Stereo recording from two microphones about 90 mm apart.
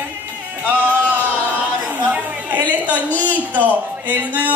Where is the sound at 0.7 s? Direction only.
20° left (ahead or behind).